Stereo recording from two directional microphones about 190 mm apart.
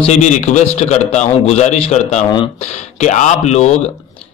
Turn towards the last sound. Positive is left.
turn(degrees=35)  # may be behind; listen again after turning